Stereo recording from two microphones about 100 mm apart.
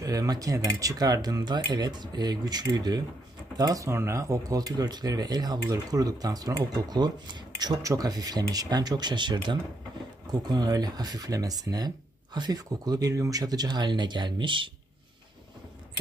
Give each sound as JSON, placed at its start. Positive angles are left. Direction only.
{"t": 0.0, "sound": "speech", "side_deg": -35}